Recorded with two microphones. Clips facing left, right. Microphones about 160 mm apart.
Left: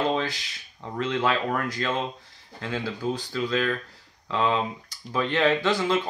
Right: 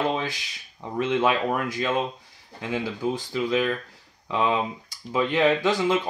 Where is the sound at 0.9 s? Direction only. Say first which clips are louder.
Right 3 dB; 15° right (ahead or behind).